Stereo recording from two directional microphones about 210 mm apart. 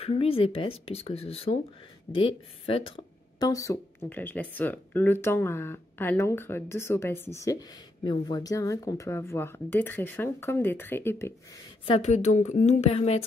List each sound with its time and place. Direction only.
0.0 s speech: 25° left (ahead or behind); by 11.3 s 10° left (ahead or behind)
11.8 s speech: 30° left (ahead or behind)